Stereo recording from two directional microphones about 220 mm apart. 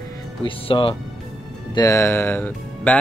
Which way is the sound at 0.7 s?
25° left (ahead or behind).